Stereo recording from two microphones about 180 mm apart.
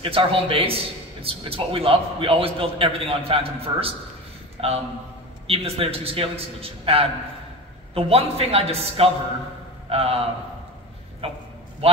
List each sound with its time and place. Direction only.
0.0 s a man's voice: 30° right (ahead or behind)
11.8 s a man's voice: 35° right (ahead or behind)